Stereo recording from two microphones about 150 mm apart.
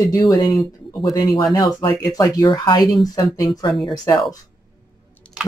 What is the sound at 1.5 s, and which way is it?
Speech, 30° left (ahead or behind).